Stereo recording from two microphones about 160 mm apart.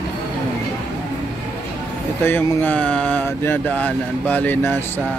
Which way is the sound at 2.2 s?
15° left (ahead or behind).